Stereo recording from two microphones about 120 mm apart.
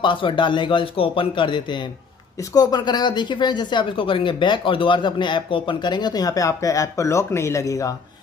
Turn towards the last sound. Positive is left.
turn(degrees=30)  # may be behind; listen again after turning